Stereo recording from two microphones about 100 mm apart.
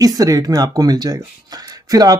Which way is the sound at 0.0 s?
35° right (ahead or behind).